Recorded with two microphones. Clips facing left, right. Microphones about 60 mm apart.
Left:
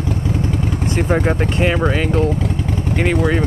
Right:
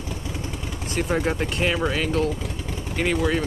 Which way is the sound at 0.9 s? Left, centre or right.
Left.